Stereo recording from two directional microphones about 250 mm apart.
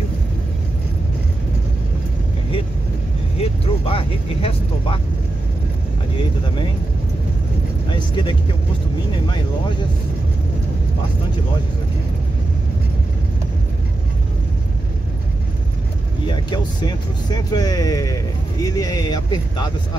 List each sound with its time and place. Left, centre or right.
3.3 s speech: left
7.9 s speech: centre
16.3 s speech: centre